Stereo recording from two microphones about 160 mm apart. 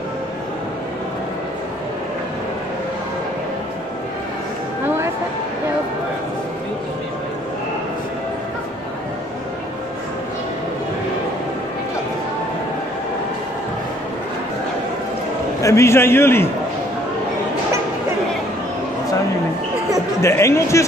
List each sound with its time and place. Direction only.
4.8 s a sound: 15° right (ahead or behind)
15.6 s a man's voice: 15° left (ahead or behind)
20.2 s a man's voice: 15° left (ahead or behind)